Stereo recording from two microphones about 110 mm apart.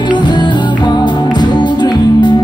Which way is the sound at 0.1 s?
45° left (ahead or behind).